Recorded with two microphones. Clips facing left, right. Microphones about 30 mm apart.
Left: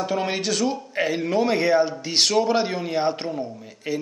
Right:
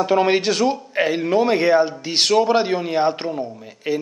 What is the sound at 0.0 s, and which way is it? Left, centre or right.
A man's voice, right.